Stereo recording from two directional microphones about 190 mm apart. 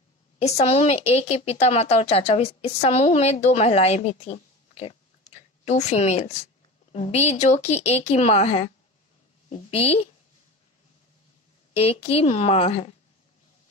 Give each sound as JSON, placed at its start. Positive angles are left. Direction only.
{"t": 0.4, "sound": "a woman's voice", "side_deg": 35}
{"t": 11.7, "sound": "a woman's voice", "side_deg": 30}